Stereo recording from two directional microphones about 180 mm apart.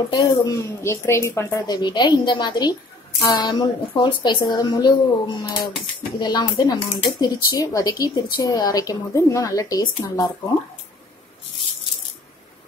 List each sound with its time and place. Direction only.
0.1 s a woman's voice: 25° left (ahead or behind)